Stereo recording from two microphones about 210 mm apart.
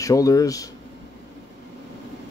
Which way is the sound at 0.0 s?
15° left (ahead or behind).